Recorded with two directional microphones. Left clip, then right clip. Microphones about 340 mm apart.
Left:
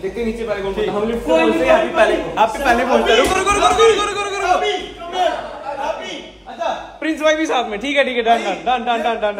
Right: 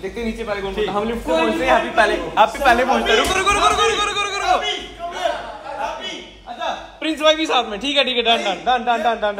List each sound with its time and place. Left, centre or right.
0.5 s a man's voice: centre
7.0 s a man's voice: centre